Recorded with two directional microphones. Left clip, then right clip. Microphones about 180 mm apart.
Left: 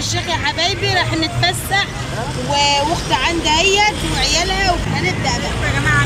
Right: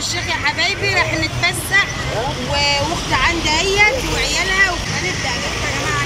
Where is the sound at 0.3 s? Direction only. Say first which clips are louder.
Even; 15° left (ahead or behind).